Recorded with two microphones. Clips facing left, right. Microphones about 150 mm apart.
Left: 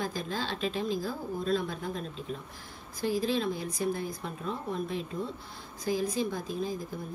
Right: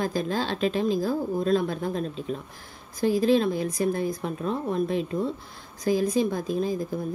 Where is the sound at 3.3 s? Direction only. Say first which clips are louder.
Right 7 dB; 90° right.